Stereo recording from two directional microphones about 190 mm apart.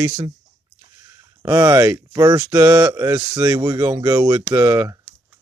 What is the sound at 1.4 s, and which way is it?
Speech, 15° right (ahead or behind).